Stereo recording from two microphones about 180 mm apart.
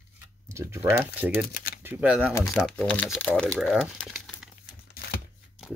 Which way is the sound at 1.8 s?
10° right (ahead or behind).